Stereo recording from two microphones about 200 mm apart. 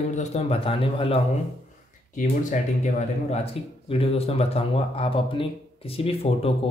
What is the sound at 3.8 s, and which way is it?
Speech, 30° left (ahead or behind).